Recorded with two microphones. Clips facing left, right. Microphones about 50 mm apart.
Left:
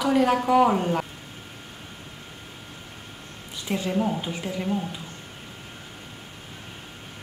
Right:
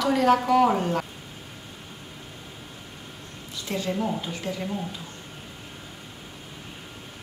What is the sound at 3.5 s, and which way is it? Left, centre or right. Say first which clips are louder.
A woman's voice: left 2 dB; centre.